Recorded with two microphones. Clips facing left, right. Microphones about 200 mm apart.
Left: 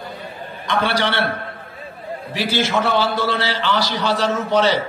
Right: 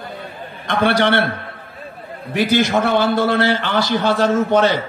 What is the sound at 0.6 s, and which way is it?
Speech, 55° right (ahead or behind).